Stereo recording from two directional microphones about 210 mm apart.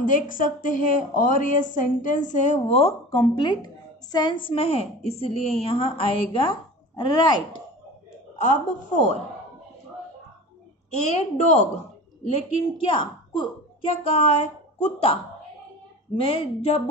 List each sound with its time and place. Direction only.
0.0 s a woman's voice: 40° left (ahead or behind); by 7.4 s 20° left (ahead or behind)
8.4 s a woman's voice: 35° left (ahead or behind)
10.9 s a woman's voice: 30° left (ahead or behind)
12.9 s speech: 25° left (ahead or behind)
16.2 s a woman's voice: 25° left (ahead or behind)